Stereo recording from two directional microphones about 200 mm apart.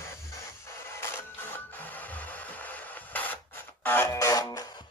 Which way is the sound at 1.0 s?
10° left (ahead or behind).